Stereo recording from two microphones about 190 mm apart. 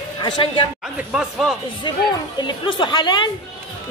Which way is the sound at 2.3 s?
25° left (ahead or behind).